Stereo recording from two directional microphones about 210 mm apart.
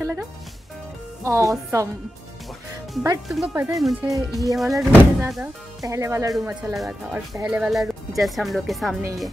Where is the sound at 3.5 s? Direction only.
15° right (ahead or behind).